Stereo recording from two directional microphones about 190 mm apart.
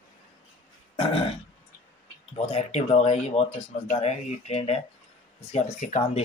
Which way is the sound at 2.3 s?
35° left (ahead or behind).